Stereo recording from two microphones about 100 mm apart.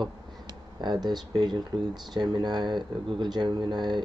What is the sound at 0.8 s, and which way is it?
Speech, 45° right (ahead or behind).